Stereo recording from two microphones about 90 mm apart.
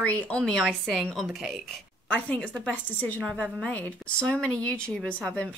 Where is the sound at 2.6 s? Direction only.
15° left (ahead or behind).